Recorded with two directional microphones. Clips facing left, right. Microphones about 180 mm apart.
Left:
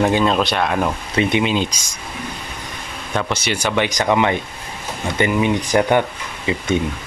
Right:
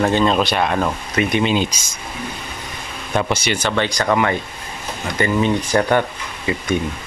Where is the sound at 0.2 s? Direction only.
Centre (ahead or behind).